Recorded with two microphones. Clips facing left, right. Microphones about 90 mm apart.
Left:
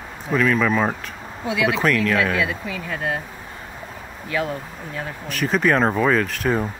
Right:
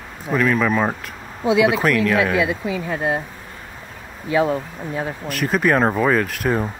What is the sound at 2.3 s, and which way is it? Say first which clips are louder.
Speech: right 4 dB; 15° right (ahead or behind).